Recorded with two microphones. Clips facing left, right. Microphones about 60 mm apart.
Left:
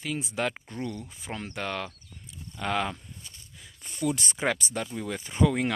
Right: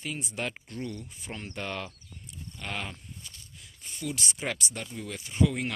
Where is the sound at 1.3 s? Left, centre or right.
Left.